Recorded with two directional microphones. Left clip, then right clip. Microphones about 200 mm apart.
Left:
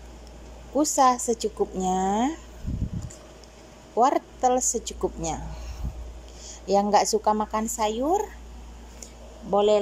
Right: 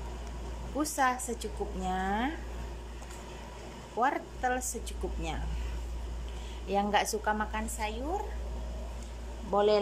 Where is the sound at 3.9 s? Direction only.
25° left (ahead or behind).